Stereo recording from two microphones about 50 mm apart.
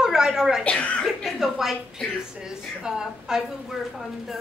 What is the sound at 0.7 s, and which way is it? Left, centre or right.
Speech, left.